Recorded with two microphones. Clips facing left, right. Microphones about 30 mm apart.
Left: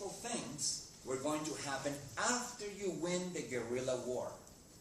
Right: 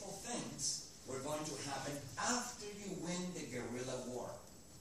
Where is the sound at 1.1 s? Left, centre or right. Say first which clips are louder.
Left 5 dB; left.